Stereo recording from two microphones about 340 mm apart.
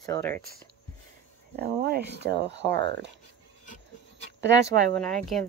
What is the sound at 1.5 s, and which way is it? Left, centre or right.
Speech, right.